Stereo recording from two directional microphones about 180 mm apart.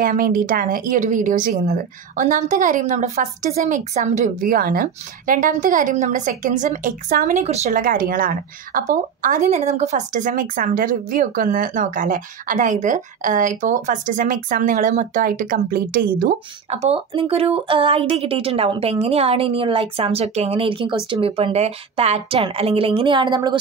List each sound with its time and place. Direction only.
0.0 s a woman's voice: 50° right (ahead or behind)
7.8 s a woman's voice: 50° right (ahead or behind)
16.6 s speech: 35° right (ahead or behind)